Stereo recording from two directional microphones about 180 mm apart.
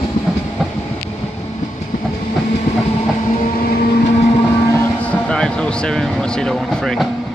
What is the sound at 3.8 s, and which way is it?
Vehicle, 65° left (ahead or behind).